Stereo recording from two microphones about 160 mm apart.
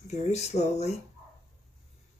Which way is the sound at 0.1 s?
45° left (ahead or behind).